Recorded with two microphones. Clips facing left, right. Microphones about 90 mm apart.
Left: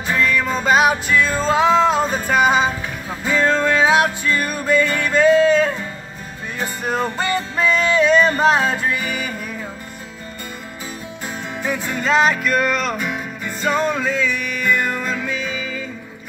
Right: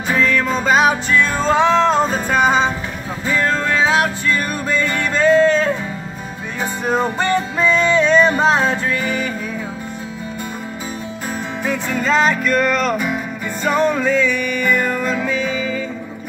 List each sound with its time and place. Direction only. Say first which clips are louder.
0.2 s music: right 1 dB; 5° left (ahead or behind)
3.3 s music: left 1 dB; 15° left (ahead or behind)
6.8 s music: right 4 dB; centre (ahead or behind)
11.6 s music: right 2 dB; 5° left (ahead or behind)